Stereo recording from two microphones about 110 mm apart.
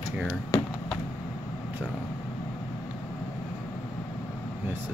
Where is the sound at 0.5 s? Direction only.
30° left (ahead or behind).